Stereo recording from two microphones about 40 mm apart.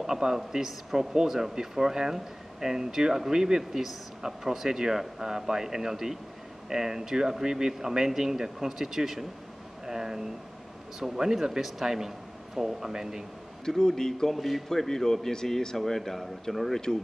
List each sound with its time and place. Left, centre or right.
0.0 s speech: centre
9.8 s a sound: centre
11.0 s speech: centre
13.7 s a man's voice: centre
14.3 s a man's voice: centre